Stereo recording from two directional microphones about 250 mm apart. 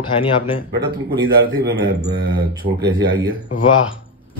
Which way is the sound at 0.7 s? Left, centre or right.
Right.